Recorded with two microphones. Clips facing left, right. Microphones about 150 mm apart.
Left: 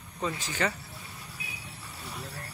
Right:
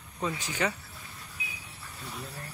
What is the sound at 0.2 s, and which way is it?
Speech, 10° right (ahead or behind).